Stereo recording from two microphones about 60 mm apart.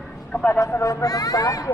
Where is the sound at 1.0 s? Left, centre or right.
Left.